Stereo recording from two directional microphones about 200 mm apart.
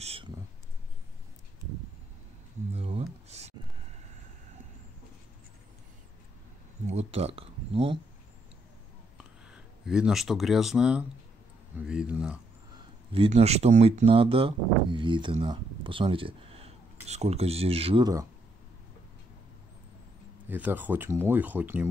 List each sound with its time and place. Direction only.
0.0 s a sound: 30° right (ahead or behind)
2.7 s a sound: 30° right (ahead or behind)
6.9 s speech: 30° right (ahead or behind)
9.5 s speech: 5° right (ahead or behind)
13.1 s speech: 30° right (ahead or behind)
20.4 s speech: 10° right (ahead or behind)